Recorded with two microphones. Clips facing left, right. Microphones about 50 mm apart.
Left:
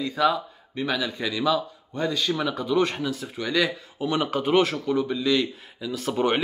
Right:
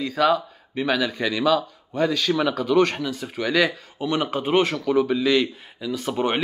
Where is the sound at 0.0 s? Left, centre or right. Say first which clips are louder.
Right 3 dB; right.